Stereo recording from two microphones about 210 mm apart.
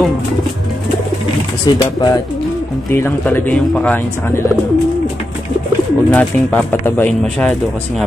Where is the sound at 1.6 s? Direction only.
20° left (ahead or behind).